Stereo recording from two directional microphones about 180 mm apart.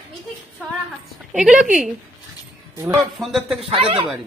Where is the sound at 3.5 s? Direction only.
30° right (ahead or behind).